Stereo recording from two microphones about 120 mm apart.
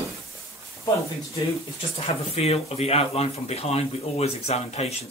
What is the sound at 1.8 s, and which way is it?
Speech, 55° left (ahead or behind).